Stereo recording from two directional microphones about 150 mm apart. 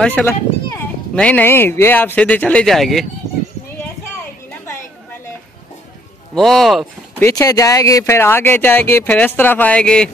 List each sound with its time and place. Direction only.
0.0 s speech: 10° left (ahead or behind)
6.3 s speech: centre (ahead or behind)
7.2 s speech: 20° left (ahead or behind)